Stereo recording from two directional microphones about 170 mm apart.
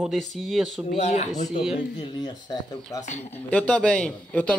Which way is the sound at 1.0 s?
40° left (ahead or behind).